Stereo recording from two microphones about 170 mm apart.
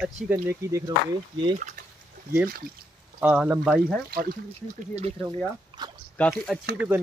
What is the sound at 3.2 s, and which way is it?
Speech, 10° right (ahead or behind).